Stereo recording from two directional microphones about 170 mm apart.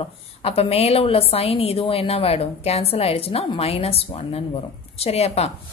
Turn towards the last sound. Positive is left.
turn(degrees=40)  # may be behind; listen again after turning